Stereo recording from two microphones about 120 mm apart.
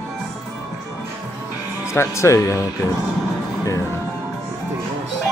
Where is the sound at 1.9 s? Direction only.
20° left (ahead or behind).